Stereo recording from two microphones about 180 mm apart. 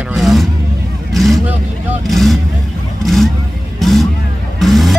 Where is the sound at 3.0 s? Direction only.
Centre (ahead or behind).